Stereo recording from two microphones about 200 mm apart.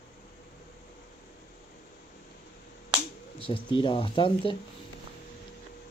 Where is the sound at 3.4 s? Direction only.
25° left (ahead or behind).